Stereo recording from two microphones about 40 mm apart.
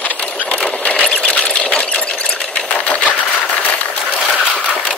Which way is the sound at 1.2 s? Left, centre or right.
Left.